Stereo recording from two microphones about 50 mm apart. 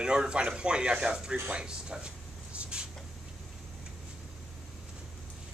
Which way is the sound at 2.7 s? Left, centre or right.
Centre.